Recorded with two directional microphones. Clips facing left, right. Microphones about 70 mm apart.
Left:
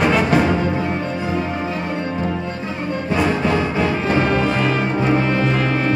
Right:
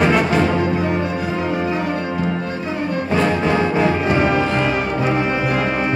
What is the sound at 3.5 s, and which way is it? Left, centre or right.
Music, right.